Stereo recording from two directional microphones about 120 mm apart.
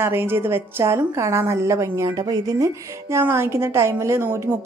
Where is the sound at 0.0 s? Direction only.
20° right (ahead or behind).